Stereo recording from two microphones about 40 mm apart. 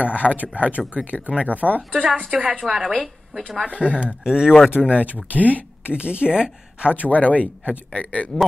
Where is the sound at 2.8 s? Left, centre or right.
Centre.